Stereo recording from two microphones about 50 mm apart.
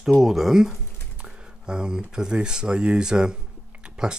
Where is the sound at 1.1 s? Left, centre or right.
Right.